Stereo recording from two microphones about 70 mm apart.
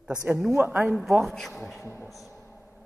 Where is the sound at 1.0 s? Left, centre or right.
Centre.